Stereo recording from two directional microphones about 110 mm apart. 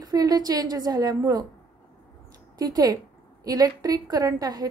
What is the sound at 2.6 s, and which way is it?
A woman's voice, 35° right (ahead or behind).